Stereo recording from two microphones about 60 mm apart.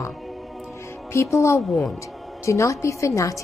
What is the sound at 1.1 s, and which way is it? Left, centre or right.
Speech, left.